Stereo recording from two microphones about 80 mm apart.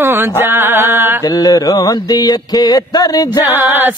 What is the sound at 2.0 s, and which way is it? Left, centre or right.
Speech, left.